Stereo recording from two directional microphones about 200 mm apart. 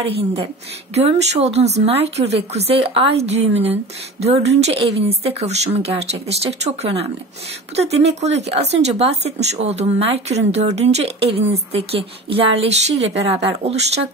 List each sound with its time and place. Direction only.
0.9 s speech: 30° right (ahead or behind)